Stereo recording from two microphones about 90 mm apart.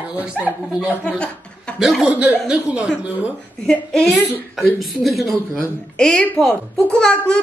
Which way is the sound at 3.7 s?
5° left (ahead or behind).